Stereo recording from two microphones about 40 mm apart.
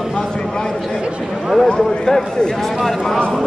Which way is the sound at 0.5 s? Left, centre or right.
Centre.